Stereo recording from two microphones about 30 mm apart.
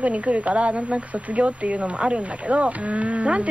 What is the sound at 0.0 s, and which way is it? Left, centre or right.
Speech, right.